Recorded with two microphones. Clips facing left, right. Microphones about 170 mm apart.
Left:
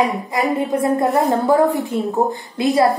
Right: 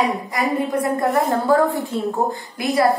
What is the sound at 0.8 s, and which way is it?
A woman's voice, 20° left (ahead or behind).